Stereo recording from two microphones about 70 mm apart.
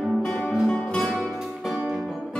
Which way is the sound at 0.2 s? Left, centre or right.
Centre.